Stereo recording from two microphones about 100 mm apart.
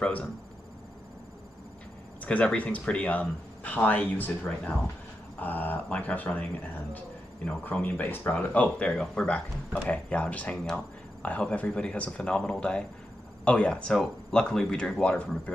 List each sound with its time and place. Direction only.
0.0 s speech: 10° left (ahead or behind)
2.2 s speech: 10° left (ahead or behind)
5.4 s speech: 20° left (ahead or behind)
7.4 s speech: 15° left (ahead or behind)